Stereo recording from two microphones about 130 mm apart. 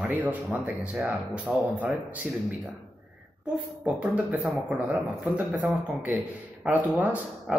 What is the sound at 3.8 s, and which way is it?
A man's voice, 10° right (ahead or behind).